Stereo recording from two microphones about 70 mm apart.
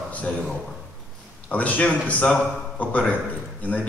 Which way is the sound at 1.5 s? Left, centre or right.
Left.